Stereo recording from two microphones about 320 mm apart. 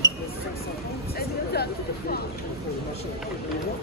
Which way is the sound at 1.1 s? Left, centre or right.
Left.